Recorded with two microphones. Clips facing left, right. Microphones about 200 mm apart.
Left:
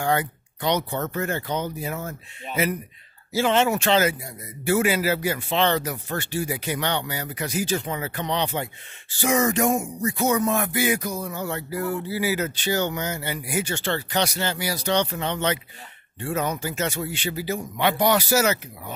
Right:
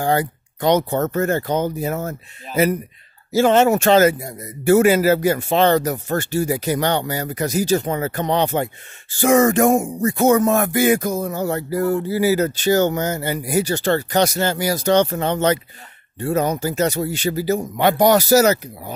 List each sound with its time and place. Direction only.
0.0 s music: 35° right (ahead or behind)
16.2 s speech: 40° right (ahead or behind)